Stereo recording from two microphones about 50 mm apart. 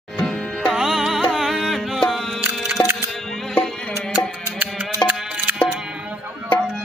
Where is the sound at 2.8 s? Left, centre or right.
Left.